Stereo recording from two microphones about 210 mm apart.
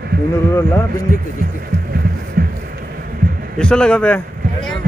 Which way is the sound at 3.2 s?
45° right (ahead or behind).